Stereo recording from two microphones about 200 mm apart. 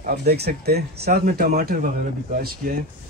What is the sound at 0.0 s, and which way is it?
Speech, 45° right (ahead or behind).